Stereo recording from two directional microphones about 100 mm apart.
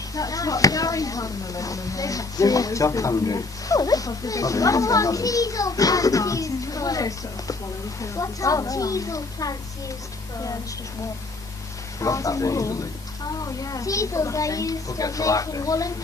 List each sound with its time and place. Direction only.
0.1 s speech: 35° left (ahead or behind)
12.0 s speech: 35° left (ahead or behind)